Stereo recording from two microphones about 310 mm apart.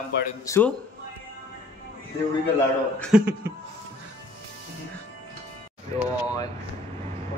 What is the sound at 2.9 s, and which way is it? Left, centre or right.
Speech, centre.